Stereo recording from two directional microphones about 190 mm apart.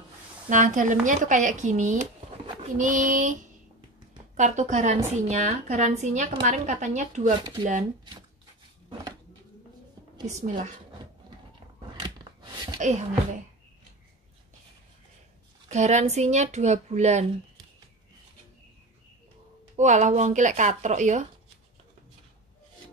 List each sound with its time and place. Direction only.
0.5 s speech: 40° right (ahead or behind)
2.4 s pigeon: 40° right (ahead or behind)
4.4 s speech: 40° right (ahead or behind)
10.2 s speech: 40° right (ahead or behind)
11.9 s a sound: 20° right (ahead or behind)
12.7 s speech: 40° right (ahead or behind)
15.7 s speech: 35° right (ahead or behind)
19.8 s speech: 40° right (ahead or behind)